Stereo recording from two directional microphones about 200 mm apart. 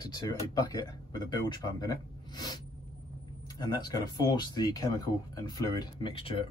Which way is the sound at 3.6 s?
20° left (ahead or behind).